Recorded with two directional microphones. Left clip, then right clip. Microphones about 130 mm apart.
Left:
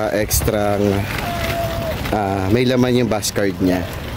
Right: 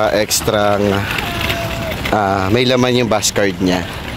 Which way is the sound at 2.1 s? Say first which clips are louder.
Right 5 dB; 15° left (ahead or behind).